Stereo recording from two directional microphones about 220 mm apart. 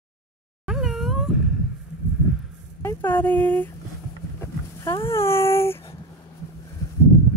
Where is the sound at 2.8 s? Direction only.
10° left (ahead or behind).